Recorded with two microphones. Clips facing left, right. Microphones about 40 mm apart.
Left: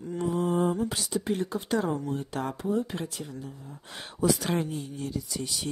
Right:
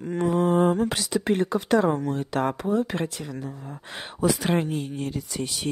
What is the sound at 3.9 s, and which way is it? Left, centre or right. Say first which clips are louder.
Speech: right 3 dB; right.